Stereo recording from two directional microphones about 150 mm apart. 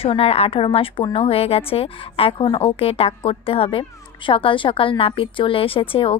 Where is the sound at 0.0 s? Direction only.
40° left (ahead or behind).